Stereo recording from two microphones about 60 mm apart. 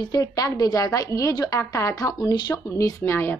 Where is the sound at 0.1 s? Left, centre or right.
Left.